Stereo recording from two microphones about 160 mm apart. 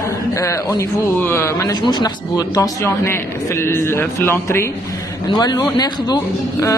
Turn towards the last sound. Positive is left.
turn(degrees=25)  # may be behind; listen again after turning